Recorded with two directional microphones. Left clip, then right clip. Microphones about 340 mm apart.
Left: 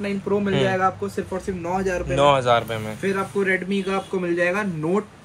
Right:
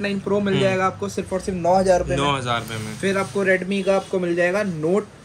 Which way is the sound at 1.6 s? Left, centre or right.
Right.